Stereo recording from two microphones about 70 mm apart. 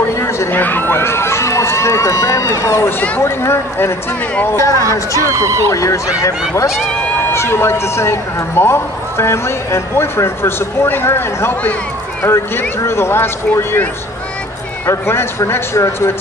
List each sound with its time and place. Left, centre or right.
0.5 s a man's voice: left
5.2 s speech: right
5.7 s speech: left
7.2 s a man's voice: left
14.9 s a man's voice: left